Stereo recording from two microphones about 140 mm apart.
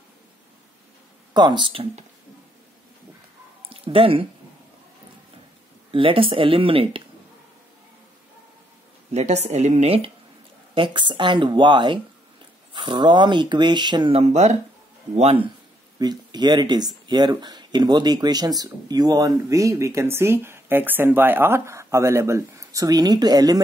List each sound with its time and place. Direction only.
1.3 s speech: 30° right (ahead or behind)
3.6 s speech: 40° right (ahead or behind)
5.9 s speech: 40° right (ahead or behind)
9.1 s a woman's voice: 50° right (ahead or behind); by 14.1 s 30° right (ahead or behind)
14.1 s speech: 55° right (ahead or behind)
15.1 s a woman's voice: 45° right (ahead or behind)
16.0 s speech: 30° right (ahead or behind)